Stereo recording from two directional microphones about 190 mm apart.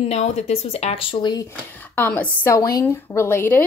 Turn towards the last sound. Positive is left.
turn(degrees=10)  # may be behind; listen again after turning